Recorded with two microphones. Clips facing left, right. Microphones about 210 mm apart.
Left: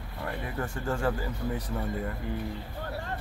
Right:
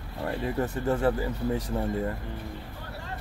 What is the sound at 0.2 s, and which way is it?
Speech, 20° right (ahead or behind).